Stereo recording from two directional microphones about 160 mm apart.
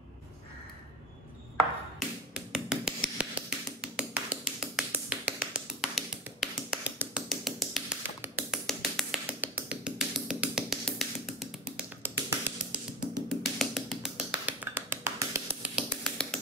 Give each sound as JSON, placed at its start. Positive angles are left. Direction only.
{"t": 2.0, "sound": "tap", "side_deg": -5}
{"t": 3.8, "sound": "finger snapping", "side_deg": -5}
{"t": 8.2, "sound": "tap", "side_deg": -10}
{"t": 8.6, "sound": "tap", "side_deg": 0}
{"t": 9.4, "sound": "music", "side_deg": -10}
{"t": 12.0, "sound": "music", "side_deg": -15}
{"t": 13.3, "sound": "music", "side_deg": 0}
{"t": 15.7, "sound": "finger snapping", "side_deg": 0}